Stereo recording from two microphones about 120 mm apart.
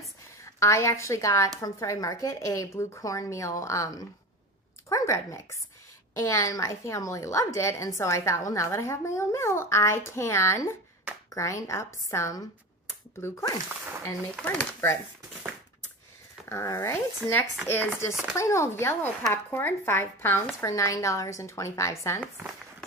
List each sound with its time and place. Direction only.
0.6 s speech: 25° left (ahead or behind)
14.4 s speech: 15° left (ahead or behind)
16.4 s speech: 25° left (ahead or behind)